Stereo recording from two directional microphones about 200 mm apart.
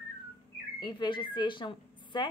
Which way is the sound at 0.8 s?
20° left (ahead or behind).